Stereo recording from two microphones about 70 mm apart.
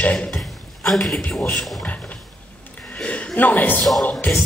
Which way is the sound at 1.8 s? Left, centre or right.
Left.